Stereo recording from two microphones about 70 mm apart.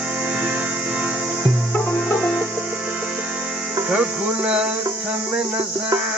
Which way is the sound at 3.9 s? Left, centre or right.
Centre.